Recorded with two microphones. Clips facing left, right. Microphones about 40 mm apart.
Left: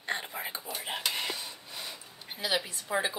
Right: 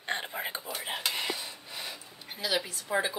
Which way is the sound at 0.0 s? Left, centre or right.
Right.